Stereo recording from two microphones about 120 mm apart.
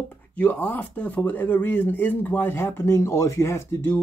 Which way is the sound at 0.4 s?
15° left (ahead or behind).